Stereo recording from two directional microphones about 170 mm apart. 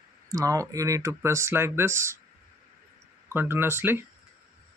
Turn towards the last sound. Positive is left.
turn(degrees=-15)  # may be behind; listen again after turning